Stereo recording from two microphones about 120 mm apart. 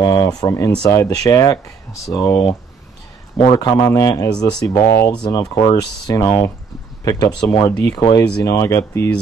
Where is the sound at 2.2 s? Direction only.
45° left (ahead or behind).